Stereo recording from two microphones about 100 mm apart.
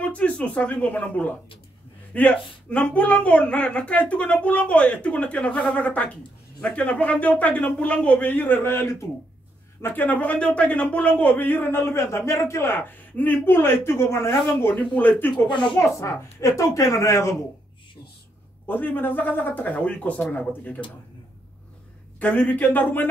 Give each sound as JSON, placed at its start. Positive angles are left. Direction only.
{"t": 0.0, "sound": "a man's voice", "side_deg": 15}
{"t": 15.3, "sound": "a woman's voice", "side_deg": 50}
{"t": 15.8, "sound": "a man's voice", "side_deg": 30}
{"t": 18.7, "sound": "speech", "side_deg": 20}
{"t": 22.2, "sound": "speech", "side_deg": 15}